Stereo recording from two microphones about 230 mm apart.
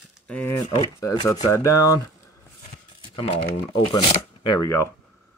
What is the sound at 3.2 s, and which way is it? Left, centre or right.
Speech, left.